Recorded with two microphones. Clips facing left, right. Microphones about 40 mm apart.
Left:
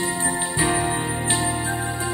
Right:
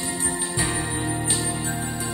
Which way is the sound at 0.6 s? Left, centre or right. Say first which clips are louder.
Left 7 dB; centre.